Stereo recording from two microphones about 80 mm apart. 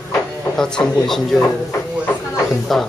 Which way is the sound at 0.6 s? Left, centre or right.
Centre.